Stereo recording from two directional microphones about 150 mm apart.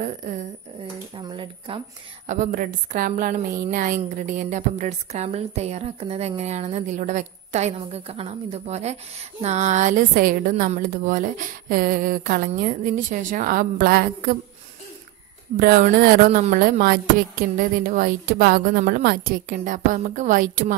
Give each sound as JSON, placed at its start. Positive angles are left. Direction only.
{"t": 0.0, "sound": "speech", "side_deg": -60}
{"t": 1.1, "sound": "speech", "side_deg": -35}
{"t": 2.2, "sound": "a woman's voice", "side_deg": -55}
{"t": 15.5, "sound": "a woman's voice", "side_deg": -65}
{"t": 16.5, "sound": "a woman's voice", "side_deg": -75}